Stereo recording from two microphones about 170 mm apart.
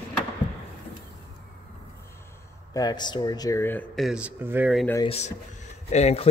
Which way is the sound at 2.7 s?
25° left (ahead or behind).